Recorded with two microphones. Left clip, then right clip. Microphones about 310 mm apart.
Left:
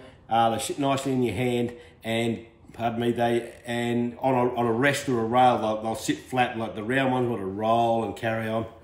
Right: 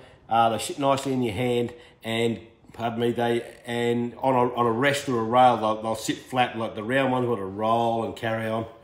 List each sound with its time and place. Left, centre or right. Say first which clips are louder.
0.3 s speech: right 1 dB; centre